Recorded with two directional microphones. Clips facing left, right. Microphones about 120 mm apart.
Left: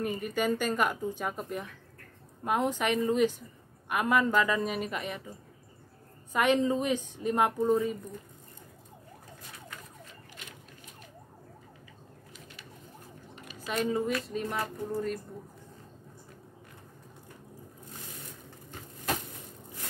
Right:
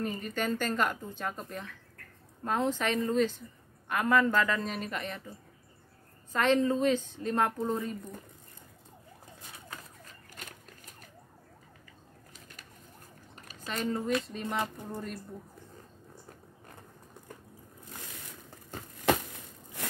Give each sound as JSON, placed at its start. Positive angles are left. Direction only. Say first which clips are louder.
{"t": 0.0, "sound": "a woman's voice", "louder": "left 3 dB", "side_deg": 10}
{"t": 6.3, "sound": "a woman's voice", "louder": "even", "side_deg": 15}
{"t": 13.7, "sound": "speech", "louder": "left 2 dB", "side_deg": 5}
{"t": 19.1, "sound": "a sound", "louder": "right 6 dB", "side_deg": -80}